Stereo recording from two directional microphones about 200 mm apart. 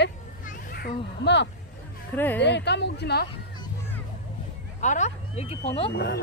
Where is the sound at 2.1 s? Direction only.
10° left (ahead or behind).